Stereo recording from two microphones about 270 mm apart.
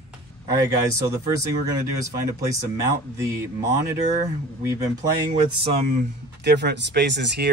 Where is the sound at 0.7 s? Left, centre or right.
Centre.